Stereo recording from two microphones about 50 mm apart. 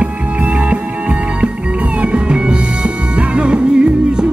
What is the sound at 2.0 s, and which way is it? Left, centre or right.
Music, right.